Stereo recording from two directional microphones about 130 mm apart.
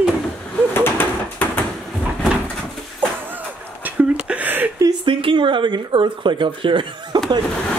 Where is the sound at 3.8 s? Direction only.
10° right (ahead or behind).